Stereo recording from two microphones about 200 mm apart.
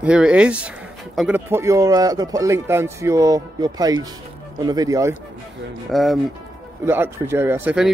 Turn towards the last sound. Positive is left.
turn(degrees=-5)  # may be behind; listen again after turning